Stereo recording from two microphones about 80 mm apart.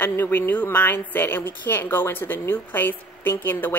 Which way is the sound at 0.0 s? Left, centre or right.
Left.